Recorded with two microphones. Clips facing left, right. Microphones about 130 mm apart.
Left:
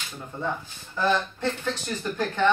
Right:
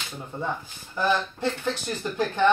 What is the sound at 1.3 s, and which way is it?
Speech, 15° right (ahead or behind).